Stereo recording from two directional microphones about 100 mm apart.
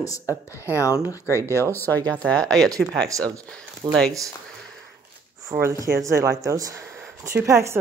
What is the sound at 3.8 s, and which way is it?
Speech, 45° right (ahead or behind).